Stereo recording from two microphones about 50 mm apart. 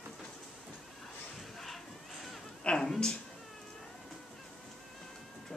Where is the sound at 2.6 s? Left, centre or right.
Centre.